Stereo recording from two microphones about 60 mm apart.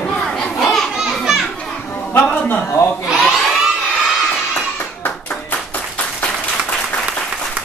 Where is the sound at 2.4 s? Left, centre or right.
Left.